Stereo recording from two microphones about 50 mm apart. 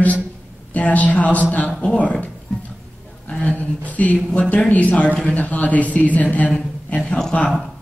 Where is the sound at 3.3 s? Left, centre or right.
Left.